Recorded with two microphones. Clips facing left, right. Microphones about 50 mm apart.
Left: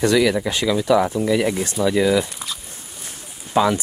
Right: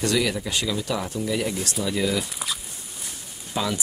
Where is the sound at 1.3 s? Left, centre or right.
Left.